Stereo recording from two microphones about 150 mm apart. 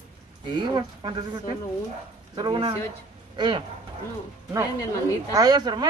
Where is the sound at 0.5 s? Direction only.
30° right (ahead or behind).